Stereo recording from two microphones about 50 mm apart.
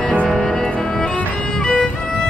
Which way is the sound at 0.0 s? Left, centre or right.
Left.